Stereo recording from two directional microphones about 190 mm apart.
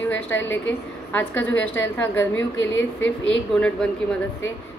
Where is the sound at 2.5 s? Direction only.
75° left (ahead or behind).